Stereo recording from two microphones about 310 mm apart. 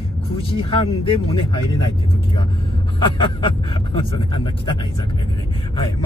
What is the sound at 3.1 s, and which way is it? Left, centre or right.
Speech, centre.